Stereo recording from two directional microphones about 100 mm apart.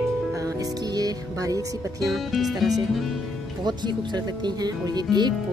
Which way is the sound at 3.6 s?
45° right (ahead or behind).